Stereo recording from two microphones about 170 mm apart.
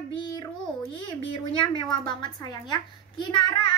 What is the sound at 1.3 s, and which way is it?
A child's voice, 25° left (ahead or behind).